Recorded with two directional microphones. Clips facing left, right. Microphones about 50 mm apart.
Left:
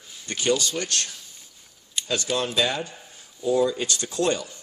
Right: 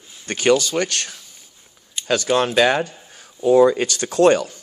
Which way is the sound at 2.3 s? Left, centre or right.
Right.